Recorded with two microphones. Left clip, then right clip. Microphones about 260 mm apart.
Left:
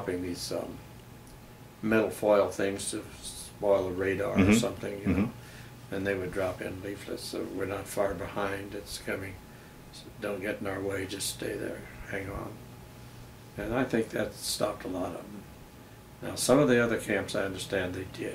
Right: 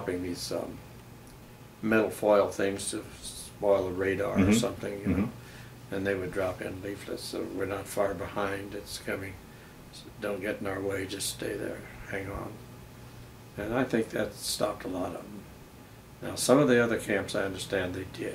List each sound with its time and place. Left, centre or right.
0.0 s speech: centre
1.9 s speech: centre
13.6 s speech: centre
14.9 s speech: right
16.2 s speech: centre